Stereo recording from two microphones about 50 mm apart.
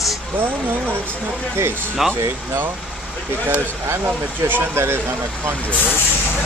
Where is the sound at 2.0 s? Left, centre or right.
Centre.